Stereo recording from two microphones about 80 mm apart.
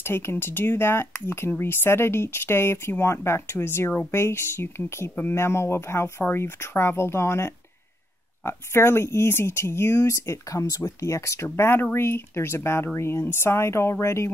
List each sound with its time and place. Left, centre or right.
0.0 s speech: left